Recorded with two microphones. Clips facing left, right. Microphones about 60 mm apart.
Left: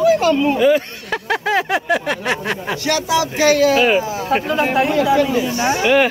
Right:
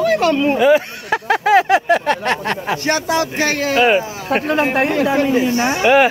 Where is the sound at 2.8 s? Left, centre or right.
Right.